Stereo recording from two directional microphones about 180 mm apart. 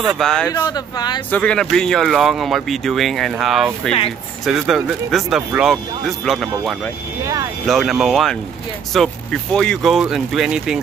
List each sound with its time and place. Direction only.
0.2 s speech: 5° left (ahead or behind)
0.5 s speech: 20° left (ahead or behind)
1.3 s speech: 5° left (ahead or behind)